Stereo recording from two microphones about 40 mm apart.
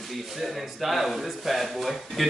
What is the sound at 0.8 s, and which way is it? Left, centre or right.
Speech, centre.